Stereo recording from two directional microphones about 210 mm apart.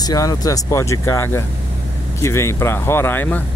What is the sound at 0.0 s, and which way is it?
Speech, 20° left (ahead or behind).